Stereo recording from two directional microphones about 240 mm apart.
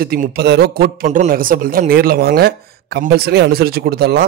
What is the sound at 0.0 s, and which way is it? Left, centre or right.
A man's voice, right.